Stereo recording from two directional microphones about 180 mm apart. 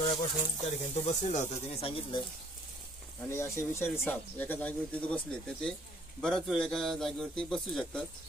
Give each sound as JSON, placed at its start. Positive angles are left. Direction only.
{"t": 0.6, "sound": "speech", "side_deg": 40}
{"t": 3.3, "sound": "a man's voice", "side_deg": 15}